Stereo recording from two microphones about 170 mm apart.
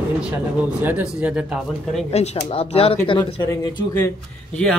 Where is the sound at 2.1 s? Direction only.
40° left (ahead or behind).